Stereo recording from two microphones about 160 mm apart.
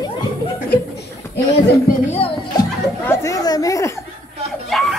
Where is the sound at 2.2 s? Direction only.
40° left (ahead or behind).